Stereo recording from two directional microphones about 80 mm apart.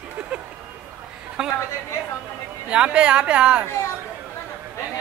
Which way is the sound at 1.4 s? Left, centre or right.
Centre.